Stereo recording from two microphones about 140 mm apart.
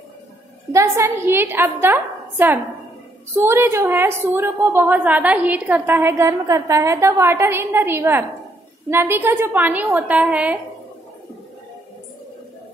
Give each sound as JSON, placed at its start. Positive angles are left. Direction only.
{"t": 0.7, "sound": "a woman's voice", "side_deg": -20}